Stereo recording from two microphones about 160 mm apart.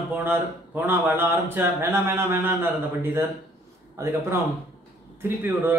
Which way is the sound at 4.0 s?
15° right (ahead or behind).